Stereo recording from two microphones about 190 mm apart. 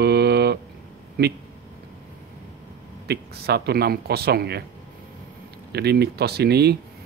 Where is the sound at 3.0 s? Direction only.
55° right (ahead or behind).